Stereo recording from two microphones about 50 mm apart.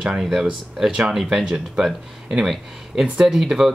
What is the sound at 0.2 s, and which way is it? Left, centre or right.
Speech, centre.